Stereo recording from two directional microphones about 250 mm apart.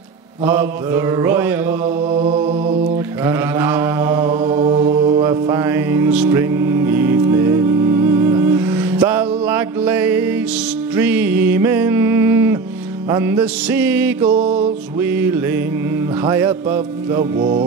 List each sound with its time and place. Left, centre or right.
0.5 s music: centre
2.1 s mantra: right
3.3 s mantra: centre
11.0 s music: centre